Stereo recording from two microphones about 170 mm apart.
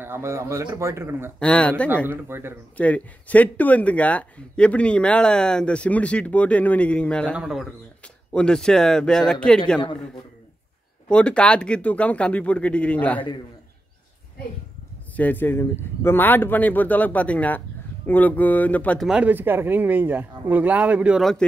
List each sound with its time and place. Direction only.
0.0 s speech: 15° right (ahead or behind)
1.4 s speech: 5° left (ahead or behind)
2.0 s speech: 15° right (ahead or behind)
2.8 s speech: 10° left (ahead or behind)
11.1 s speech: 5° left (ahead or behind)
15.1 s speech: 10° left (ahead or behind)
19.0 s speech: 10° right (ahead or behind)